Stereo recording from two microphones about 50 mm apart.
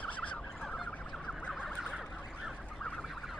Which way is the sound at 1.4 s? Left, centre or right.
Left.